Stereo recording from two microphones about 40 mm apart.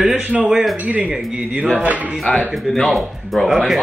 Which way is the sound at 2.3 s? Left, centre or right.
Centre.